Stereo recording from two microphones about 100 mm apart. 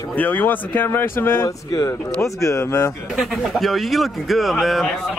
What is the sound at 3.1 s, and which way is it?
Speech, centre (ahead or behind).